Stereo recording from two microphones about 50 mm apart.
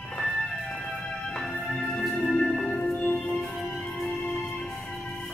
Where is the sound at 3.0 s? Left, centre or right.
Left.